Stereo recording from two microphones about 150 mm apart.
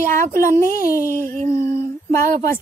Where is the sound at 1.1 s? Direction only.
60° right (ahead or behind).